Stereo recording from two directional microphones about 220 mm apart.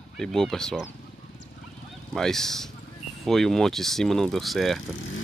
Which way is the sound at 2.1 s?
Centre (ahead or behind).